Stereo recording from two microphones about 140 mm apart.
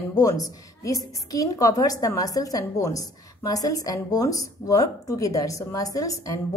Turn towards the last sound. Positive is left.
turn(degrees=25)  # may be behind; listen again after turning